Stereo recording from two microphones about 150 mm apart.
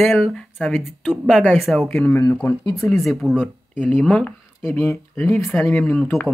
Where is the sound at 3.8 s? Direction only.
10° left (ahead or behind).